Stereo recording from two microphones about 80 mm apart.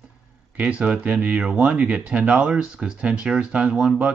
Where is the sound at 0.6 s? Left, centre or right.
Centre.